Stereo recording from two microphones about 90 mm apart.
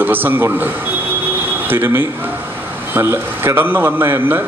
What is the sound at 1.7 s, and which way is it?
Speech, 25° right (ahead or behind).